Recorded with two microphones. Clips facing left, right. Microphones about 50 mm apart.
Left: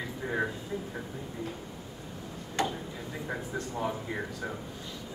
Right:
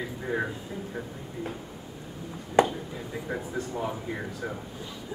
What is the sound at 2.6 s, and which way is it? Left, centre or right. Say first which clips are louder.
Speech: right 9 dB; right.